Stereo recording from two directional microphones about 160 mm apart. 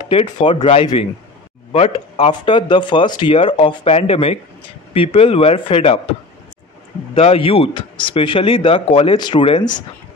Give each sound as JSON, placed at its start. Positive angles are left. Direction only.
{"t": 0.0, "sound": "speech", "side_deg": 35}
{"t": 7.2, "sound": "speech", "side_deg": 35}